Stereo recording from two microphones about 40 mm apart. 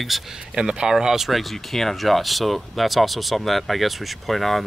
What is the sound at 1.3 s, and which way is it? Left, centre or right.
Speech, centre.